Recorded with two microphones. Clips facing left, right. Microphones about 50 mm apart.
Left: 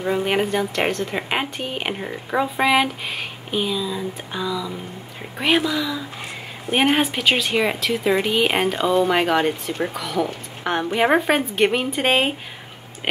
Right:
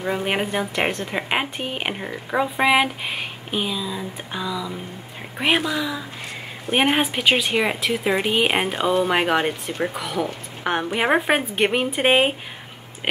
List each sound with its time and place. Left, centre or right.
0.0 s speech: centre
6.7 s speech: centre